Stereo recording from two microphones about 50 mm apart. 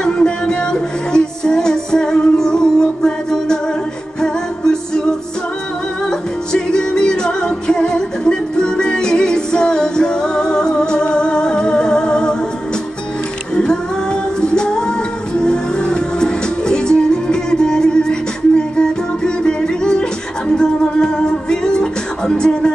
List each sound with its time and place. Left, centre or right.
0.0 s music: centre
6.0 s music: centre
14.4 s music: centre